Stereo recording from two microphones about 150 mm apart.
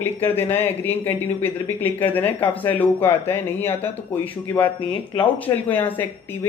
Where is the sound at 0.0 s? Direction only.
15° left (ahead or behind).